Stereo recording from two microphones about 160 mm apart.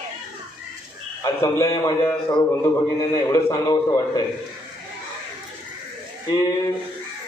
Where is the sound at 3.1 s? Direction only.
20° left (ahead or behind).